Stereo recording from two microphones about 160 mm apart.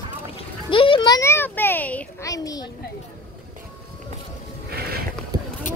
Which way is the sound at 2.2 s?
20° left (ahead or behind).